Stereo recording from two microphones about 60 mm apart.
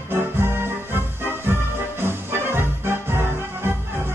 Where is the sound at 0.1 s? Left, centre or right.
Right.